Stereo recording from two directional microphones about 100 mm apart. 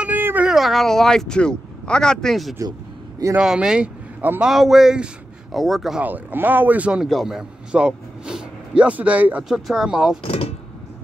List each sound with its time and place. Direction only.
0.0 s music: 20° right (ahead or behind)
0.5 s speech: centre (ahead or behind)
3.3 s a man's voice: 10° right (ahead or behind)
4.5 s speech: 5° right (ahead or behind)
6.0 s a man's voice: 15° right (ahead or behind)
9.4 s speech: 5° right (ahead or behind)
10.2 s speech: 75° left (ahead or behind)